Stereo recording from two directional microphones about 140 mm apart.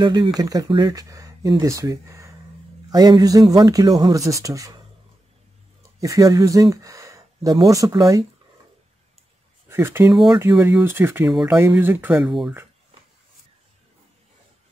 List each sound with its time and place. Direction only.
0.0 s speech: 30° right (ahead or behind)
9.7 s speech: 20° right (ahead or behind)
11.2 s speech: 5° right (ahead or behind)
11.5 s speech: 15° right (ahead or behind)
12.3 s speech: centre (ahead or behind)